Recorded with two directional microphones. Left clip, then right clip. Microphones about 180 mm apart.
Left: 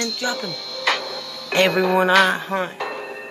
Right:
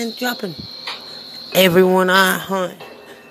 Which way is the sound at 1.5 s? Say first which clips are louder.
Right 5 dB; 45° right (ahead or behind).